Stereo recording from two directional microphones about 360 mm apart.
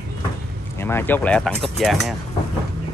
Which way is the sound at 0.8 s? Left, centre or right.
Centre.